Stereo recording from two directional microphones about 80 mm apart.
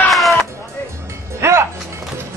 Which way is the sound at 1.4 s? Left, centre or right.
Right.